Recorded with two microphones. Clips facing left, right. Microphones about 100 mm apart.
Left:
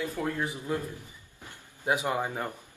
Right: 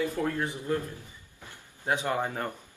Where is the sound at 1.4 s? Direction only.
15° left (ahead or behind).